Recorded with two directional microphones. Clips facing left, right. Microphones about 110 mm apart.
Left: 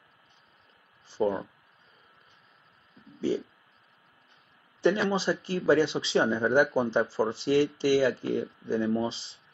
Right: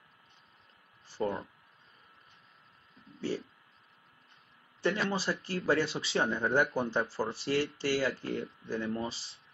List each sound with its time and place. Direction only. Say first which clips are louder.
1.1 s speech: left 6 dB; 20° left (ahead or behind)
3.2 s speech: left 7 dB; 15° left (ahead or behind)
5.1 s speech: left 5 dB; 20° left (ahead or behind)